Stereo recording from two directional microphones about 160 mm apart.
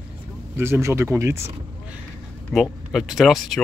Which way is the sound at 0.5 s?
15° right (ahead or behind).